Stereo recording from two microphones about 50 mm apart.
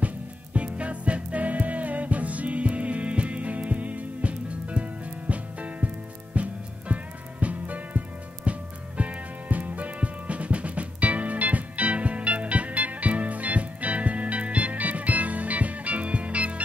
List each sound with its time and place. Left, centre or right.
0.0 s music: right